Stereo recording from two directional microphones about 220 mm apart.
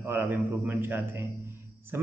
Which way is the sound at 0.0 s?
10° right (ahead or behind).